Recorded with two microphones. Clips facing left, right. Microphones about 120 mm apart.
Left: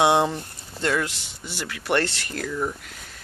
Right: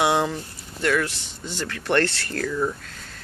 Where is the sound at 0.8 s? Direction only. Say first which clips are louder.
Right 2 dB; 20° left (ahead or behind).